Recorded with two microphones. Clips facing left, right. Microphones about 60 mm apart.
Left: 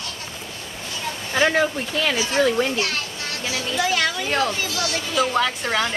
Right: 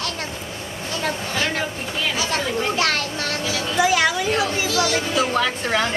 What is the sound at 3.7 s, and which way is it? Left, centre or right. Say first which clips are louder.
A woman's voice: right 4 dB; centre.